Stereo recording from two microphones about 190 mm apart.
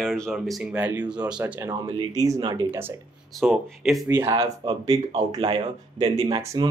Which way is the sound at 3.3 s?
Centre (ahead or behind).